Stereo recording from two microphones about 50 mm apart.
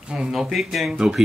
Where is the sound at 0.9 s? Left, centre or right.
Centre.